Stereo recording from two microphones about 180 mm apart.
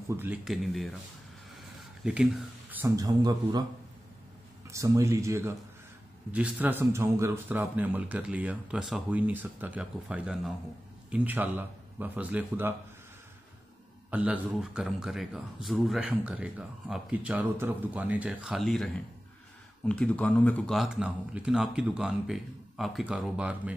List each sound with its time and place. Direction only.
0.1 s speech: 10° right (ahead or behind)
2.0 s a man's voice: 5° right (ahead or behind)
2.7 s a man's voice: 15° right (ahead or behind)
4.6 s speech: 15° right (ahead or behind)
14.1 s a man's voice: 5° right (ahead or behind)